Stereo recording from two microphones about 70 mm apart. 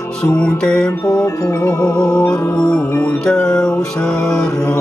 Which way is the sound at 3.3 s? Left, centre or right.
Centre.